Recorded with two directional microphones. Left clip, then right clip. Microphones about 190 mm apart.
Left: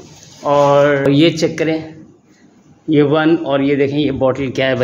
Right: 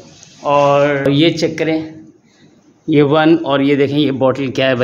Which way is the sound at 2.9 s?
20° right (ahead or behind).